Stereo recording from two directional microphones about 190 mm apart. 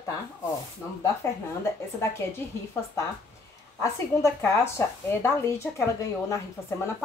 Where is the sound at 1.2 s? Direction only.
15° left (ahead or behind).